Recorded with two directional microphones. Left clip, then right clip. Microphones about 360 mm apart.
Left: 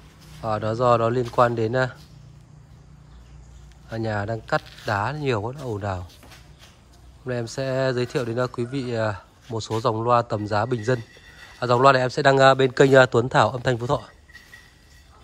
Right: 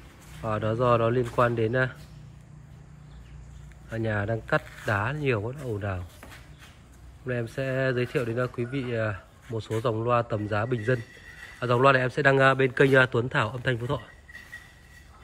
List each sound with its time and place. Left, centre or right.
0.4 s speech: centre
3.9 s speech: centre
7.5 s speech: centre